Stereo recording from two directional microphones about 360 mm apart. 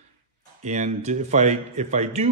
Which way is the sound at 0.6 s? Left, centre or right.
Centre.